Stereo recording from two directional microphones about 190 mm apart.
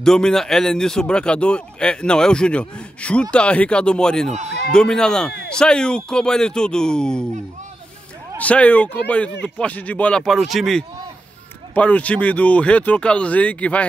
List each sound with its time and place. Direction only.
0.0 s a man's voice: 5° left (ahead or behind)
4.5 s a man's voice: 55° left (ahead or behind)
4.7 s a man's voice: 5° left (ahead or behind)
8.4 s a man's voice: 5° left (ahead or behind)